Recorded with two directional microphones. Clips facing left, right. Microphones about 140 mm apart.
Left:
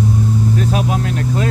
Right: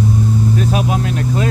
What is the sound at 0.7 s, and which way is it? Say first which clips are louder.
Speech: right 1 dB; 15° right (ahead or behind).